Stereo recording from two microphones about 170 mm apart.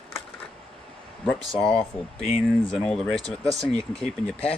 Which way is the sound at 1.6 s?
5° left (ahead or behind).